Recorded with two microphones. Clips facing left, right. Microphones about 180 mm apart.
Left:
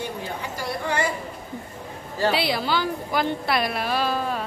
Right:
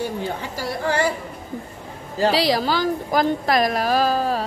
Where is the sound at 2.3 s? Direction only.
40° right (ahead or behind).